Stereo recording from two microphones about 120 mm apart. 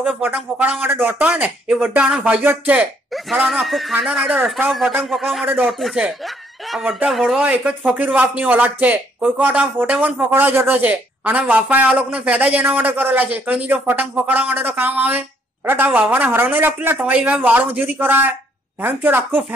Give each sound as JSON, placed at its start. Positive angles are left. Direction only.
{"t": 0.0, "sound": "speech", "side_deg": -15}
{"t": 3.4, "sound": "speech", "side_deg": 0}
{"t": 5.1, "sound": "speech", "side_deg": 0}
{"t": 5.4, "sound": "speech", "side_deg": -10}